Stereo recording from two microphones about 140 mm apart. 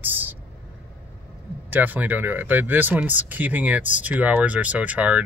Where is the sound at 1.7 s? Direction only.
10° right (ahead or behind).